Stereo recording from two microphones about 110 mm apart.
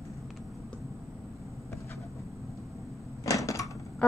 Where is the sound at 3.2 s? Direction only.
30° left (ahead or behind).